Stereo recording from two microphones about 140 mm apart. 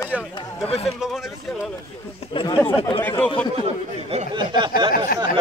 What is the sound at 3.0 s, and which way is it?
Speech, 15° left (ahead or behind).